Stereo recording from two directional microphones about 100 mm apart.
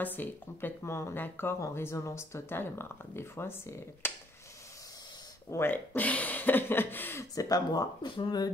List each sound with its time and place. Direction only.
0.0 s speech: 20° left (ahead or behind)
5.5 s speech: 20° left (ahead or behind)
7.3 s speech: 40° left (ahead or behind)